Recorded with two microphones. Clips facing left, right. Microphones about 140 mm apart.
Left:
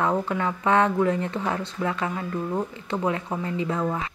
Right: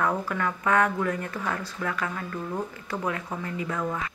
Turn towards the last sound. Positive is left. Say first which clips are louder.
# left 4 dB
turn(degrees=30)  # may be behind; listen again after turning